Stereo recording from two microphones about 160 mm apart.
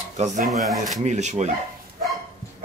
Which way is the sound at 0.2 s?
50° right (ahead or behind).